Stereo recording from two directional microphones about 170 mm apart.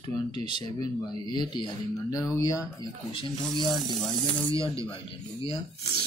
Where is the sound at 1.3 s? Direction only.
25° left (ahead or behind).